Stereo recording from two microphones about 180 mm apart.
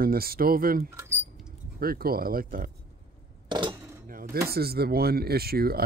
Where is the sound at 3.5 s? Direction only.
25° right (ahead or behind).